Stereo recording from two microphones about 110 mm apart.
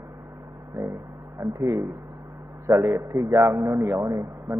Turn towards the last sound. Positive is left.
turn(degrees=0)  # may be behind; listen again after turning